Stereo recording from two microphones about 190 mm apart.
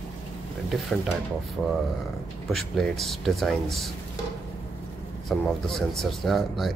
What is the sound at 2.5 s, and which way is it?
Speech, centre (ahead or behind).